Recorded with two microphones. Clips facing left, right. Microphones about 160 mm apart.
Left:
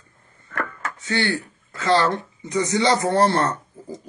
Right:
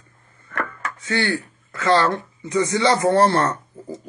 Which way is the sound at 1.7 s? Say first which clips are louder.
Right 1 dB; 25° left (ahead or behind).